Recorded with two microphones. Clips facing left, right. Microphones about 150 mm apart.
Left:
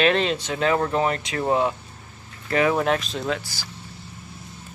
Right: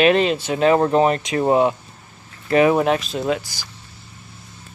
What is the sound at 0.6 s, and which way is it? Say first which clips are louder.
Speech: right 7 dB; 25° right (ahead or behind).